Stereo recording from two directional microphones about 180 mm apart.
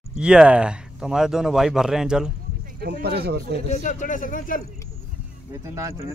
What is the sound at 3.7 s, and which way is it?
Speech, 45° left (ahead or behind).